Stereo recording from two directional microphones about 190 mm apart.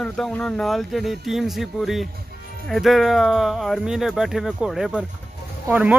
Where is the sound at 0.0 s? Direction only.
Centre (ahead or behind).